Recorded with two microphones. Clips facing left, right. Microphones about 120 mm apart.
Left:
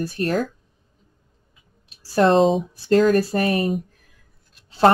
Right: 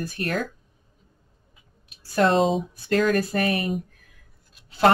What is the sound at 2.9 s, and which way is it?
Speech, 35° left (ahead or behind).